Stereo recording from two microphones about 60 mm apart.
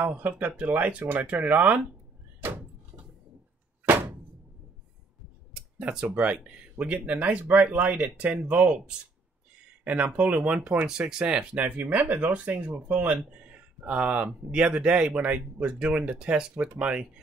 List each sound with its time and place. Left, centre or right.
0.0 s speech: right
3.8 s a sound: right
5.8 s speech: right
9.8 s speech: right